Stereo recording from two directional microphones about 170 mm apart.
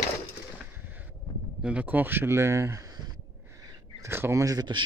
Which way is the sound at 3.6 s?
15° right (ahead or behind).